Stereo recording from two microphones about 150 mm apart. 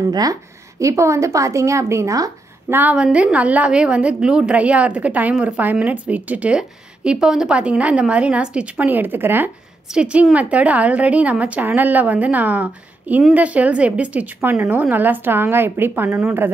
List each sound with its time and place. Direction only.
0.1 s a woman's voice: 25° right (ahead or behind)
2.8 s a woman's voice: 10° right (ahead or behind)